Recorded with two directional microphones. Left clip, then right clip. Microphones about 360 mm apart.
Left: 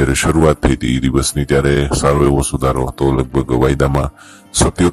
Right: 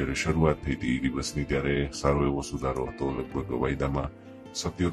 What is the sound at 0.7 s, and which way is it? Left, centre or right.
Speech, left.